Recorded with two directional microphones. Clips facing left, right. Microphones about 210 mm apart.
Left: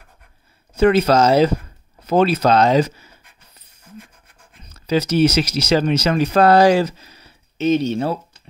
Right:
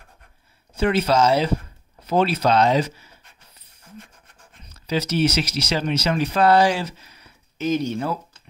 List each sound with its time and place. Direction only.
0.9 s speech: 45° left (ahead or behind)
4.9 s speech: 45° left (ahead or behind); by 8.2 s 30° left (ahead or behind)